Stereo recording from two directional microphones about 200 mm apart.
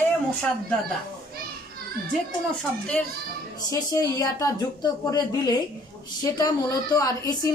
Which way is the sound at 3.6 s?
20° left (ahead or behind).